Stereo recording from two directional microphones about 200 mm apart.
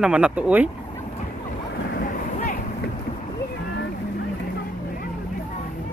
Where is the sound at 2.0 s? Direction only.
40° left (ahead or behind).